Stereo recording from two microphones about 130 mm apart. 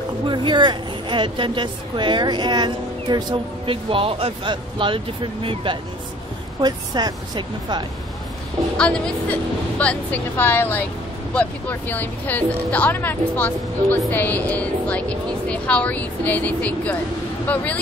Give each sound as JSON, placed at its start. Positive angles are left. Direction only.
{"t": 0.3, "sound": "a woman's voice", "side_deg": -35}
{"t": 6.6, "sound": "a woman's voice", "side_deg": -30}
{"t": 8.7, "sound": "speech", "side_deg": 5}